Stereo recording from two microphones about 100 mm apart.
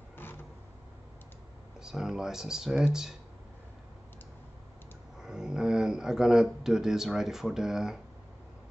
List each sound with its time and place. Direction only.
0.2 s vehicle: 20° left (ahead or behind)
1.8 s speech: 5° right (ahead or behind)
5.2 s speech: 5° right (ahead or behind)